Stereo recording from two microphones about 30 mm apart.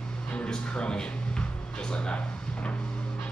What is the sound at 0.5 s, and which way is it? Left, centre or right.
A man's voice, left.